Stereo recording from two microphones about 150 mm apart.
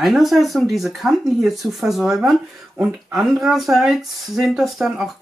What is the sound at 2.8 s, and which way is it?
Speech, 15° right (ahead or behind).